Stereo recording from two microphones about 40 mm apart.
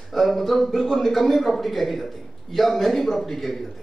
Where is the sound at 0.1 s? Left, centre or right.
Centre.